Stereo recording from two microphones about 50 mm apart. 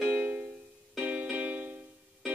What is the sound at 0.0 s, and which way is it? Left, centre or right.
Music, right.